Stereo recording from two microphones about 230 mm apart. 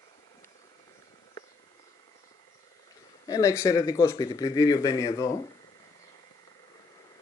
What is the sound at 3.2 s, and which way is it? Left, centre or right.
Speech, centre.